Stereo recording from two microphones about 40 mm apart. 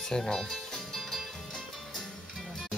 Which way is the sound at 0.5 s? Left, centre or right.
Centre.